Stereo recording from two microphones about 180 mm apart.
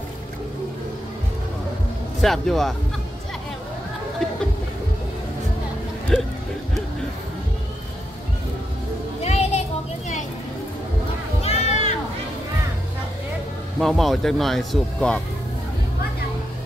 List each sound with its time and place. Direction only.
2.2 s speech: centre (ahead or behind)
6.1 s speech: centre (ahead or behind)
9.2 s music: 35° left (ahead or behind)
11.4 s a sound: 35° left (ahead or behind)
13.7 s speech: centre (ahead or behind)